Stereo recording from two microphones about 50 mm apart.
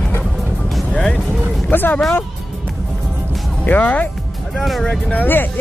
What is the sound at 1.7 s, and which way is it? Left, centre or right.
Speech, left.